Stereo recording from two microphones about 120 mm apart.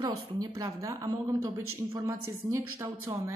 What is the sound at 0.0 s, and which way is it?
A woman's voice, 30° right (ahead or behind).